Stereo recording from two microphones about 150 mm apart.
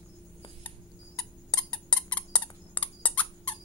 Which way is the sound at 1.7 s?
5° left (ahead or behind).